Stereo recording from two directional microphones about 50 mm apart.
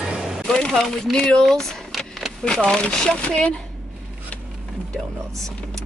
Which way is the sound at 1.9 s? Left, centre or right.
Centre.